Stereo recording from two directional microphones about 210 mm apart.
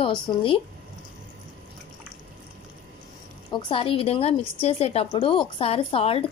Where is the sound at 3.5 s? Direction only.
25° left (ahead or behind).